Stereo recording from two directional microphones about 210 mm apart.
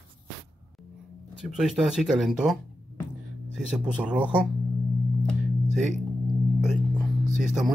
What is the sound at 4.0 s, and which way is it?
Speech, 5° right (ahead or behind).